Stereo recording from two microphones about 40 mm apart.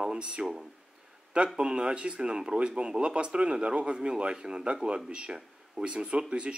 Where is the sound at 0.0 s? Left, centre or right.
Right.